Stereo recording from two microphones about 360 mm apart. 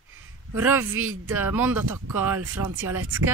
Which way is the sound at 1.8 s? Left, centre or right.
Right.